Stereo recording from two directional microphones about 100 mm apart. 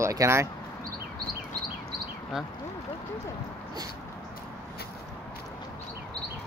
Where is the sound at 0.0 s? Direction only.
30° right (ahead or behind).